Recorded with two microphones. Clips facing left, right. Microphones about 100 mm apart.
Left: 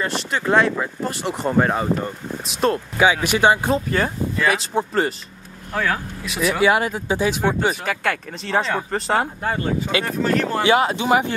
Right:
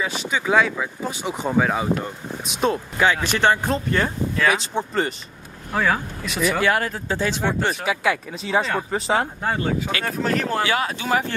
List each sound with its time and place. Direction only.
0.0 s speech: centre (ahead or behind)
3.1 s speech: 10° left (ahead or behind)
7.8 s speech: 5° right (ahead or behind)
10.6 s speech: 20° left (ahead or behind)